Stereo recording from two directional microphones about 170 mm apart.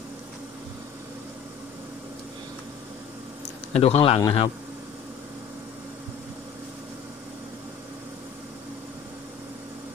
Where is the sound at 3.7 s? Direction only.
35° left (ahead or behind).